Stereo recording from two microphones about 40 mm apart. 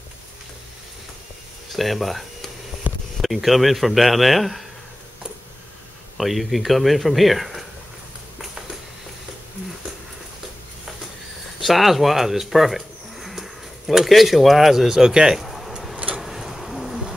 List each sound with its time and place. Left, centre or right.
1.7 s speech: centre
2.9 s a sound: right
3.2 s speech: centre
6.1 s speech: centre
11.6 s a sound: centre
14.0 s speech: centre
15.0 s speech: centre
15.4 s a sound: centre
16.2 s owl: centre